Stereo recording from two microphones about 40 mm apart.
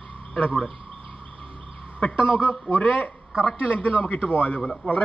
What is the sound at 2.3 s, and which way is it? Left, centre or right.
A man's voice, left.